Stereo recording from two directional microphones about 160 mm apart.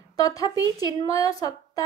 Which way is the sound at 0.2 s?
20° left (ahead or behind).